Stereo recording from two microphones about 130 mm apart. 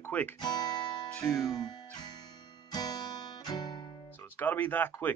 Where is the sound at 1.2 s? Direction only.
30° left (ahead or behind).